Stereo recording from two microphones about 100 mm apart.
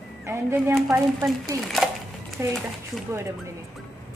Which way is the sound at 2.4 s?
25° right (ahead or behind).